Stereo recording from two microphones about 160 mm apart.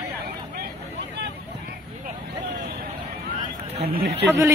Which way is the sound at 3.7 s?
85° right.